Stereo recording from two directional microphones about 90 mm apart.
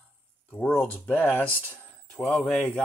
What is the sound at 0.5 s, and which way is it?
Speech, 10° left (ahead or behind).